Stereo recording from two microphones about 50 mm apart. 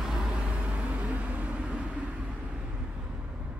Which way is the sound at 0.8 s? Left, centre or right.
Right.